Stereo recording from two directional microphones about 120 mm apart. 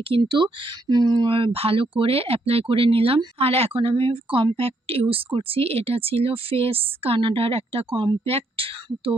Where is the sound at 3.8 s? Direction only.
45° right (ahead or behind).